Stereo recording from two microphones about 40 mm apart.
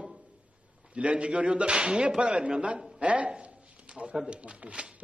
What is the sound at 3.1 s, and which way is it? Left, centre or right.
Speech, right.